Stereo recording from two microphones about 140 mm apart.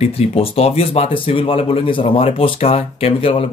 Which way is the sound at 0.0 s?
45° left (ahead or behind).